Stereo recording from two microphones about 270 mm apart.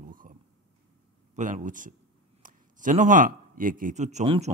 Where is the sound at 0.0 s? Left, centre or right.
Right.